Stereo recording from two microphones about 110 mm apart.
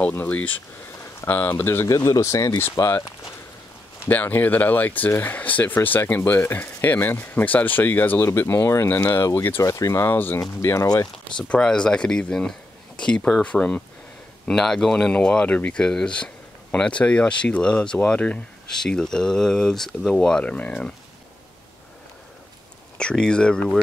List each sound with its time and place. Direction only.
0.0 s speech: 15° left (ahead or behind)
2.0 s speech: 30° left (ahead or behind)
4.1 s speech: 15° left (ahead or behind)
11.3 s speech: 10° left (ahead or behind)
22.9 s speech: 10° left (ahead or behind)